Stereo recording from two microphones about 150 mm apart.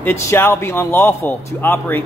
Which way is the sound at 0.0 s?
15° left (ahead or behind).